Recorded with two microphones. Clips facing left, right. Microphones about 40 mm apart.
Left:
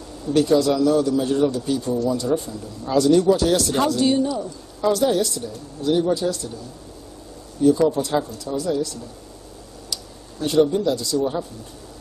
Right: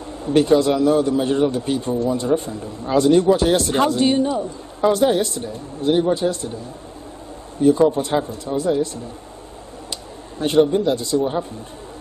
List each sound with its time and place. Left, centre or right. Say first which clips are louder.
0.2 s a man's voice: right 2 dB; right
7.6 s a man's voice: right 2 dB; right
10.4 s a man's voice: right 2 dB; right